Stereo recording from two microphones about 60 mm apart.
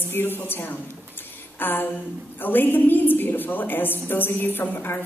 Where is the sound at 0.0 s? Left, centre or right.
Left.